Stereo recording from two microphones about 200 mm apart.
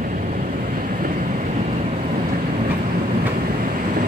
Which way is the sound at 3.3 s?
45° right (ahead or behind).